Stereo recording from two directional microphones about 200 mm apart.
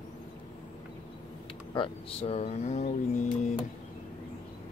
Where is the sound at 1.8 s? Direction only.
30° left (ahead or behind).